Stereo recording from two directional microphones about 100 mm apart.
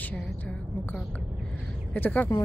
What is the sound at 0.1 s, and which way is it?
Music, 10° left (ahead or behind).